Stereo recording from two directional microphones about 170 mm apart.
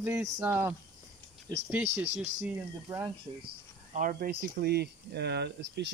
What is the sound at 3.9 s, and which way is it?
Speech, 55° right (ahead or behind).